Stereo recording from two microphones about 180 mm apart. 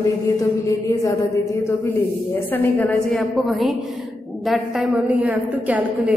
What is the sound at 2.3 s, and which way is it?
A woman's voice, 10° left (ahead or behind).